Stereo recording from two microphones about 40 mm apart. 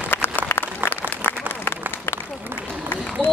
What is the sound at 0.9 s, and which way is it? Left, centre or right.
Applause, left.